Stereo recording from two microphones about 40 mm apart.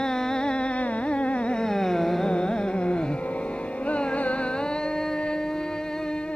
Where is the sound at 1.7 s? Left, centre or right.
Centre.